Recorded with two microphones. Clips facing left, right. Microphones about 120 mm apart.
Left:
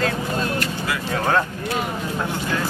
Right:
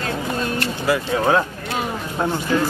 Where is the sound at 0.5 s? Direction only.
30° right (ahead or behind).